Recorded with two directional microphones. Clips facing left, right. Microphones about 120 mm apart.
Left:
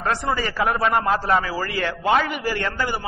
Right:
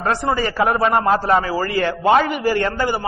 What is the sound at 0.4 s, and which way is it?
A man's voice, 40° right (ahead or behind).